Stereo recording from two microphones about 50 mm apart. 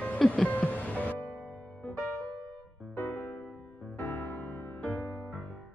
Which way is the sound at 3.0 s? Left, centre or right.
Left.